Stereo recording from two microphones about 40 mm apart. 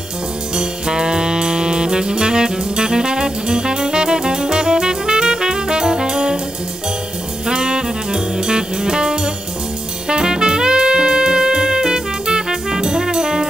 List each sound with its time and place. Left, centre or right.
0.6 s saxophone: centre
7.4 s saxophone: centre
10.0 s music: centre